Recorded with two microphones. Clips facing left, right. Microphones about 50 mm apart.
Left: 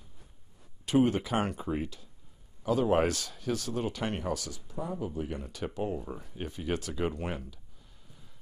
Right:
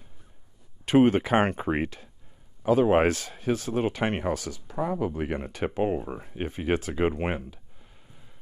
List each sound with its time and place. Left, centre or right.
0.8 s speech: right
2.6 s speech: right
4.6 s speech: right
5.5 s speech: right